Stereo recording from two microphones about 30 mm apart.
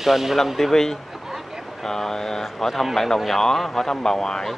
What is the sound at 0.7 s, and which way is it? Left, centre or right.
Speech, centre.